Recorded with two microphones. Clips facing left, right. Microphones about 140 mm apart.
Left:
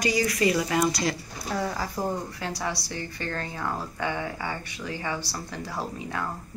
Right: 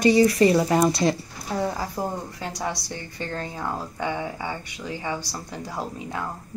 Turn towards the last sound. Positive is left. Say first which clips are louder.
# right 1 dB
turn(degrees=-20)  # may be behind; listen again after turning